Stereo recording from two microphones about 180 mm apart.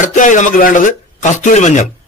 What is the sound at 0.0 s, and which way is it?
A man's voice, 45° left (ahead or behind).